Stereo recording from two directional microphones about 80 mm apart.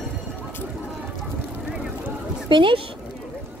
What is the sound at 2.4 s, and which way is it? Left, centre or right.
Speech, right.